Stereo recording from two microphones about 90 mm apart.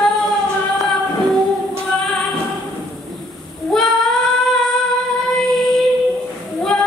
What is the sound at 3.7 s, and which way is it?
Female singing, 5° left (ahead or behind).